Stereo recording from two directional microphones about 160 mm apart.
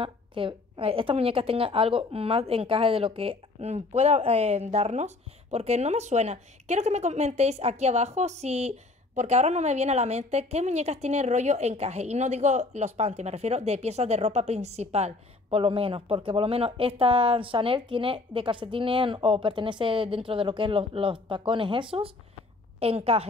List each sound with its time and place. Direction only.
0.0 s a woman's voice: 30° right (ahead or behind)